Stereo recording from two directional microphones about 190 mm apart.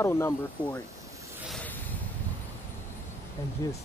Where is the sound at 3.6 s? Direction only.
20° left (ahead or behind).